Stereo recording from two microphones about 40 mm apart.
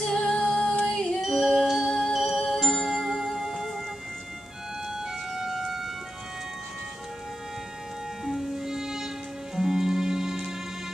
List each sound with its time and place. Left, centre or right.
0.0 s music: centre
1.2 s music: centre
4.9 s music: centre
8.3 s music: centre